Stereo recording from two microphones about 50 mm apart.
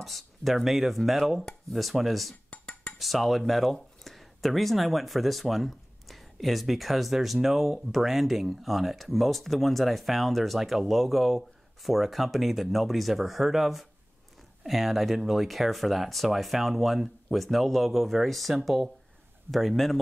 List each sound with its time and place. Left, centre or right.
0.0 s speech: centre
2.5 s dishes: left
3.0 s speech: centre